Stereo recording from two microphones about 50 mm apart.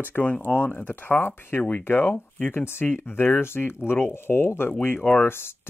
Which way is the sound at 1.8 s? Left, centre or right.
Left.